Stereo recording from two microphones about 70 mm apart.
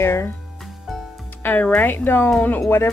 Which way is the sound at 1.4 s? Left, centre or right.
Left.